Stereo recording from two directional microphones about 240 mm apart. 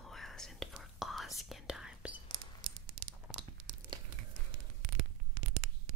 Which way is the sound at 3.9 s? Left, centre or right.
Centre.